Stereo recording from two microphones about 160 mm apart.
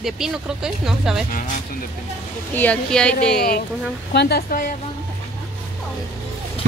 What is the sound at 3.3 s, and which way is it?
Speech, 70° left (ahead or behind).